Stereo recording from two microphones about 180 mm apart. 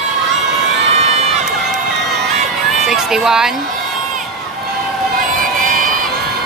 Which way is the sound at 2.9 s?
Centre (ahead or behind).